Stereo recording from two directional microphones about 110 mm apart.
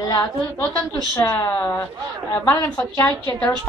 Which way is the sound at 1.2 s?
25° left (ahead or behind).